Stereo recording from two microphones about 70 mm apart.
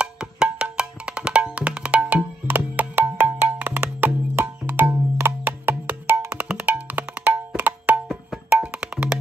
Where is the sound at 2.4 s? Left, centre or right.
Right.